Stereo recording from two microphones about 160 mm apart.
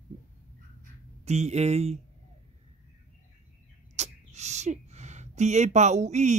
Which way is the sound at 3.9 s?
45° right (ahead or behind).